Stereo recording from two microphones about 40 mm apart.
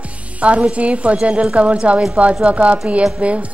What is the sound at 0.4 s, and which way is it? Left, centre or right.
A woman's voice, right.